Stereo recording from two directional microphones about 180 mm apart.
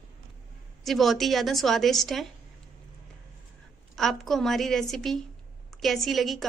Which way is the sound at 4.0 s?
Centre (ahead or behind).